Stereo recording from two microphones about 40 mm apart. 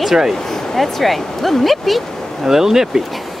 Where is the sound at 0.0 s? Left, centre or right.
Centre.